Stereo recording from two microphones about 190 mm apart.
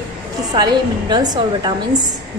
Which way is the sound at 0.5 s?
20° right (ahead or behind).